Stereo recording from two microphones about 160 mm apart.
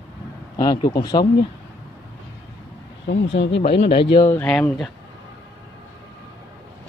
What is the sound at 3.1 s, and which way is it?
Speech, 90° left.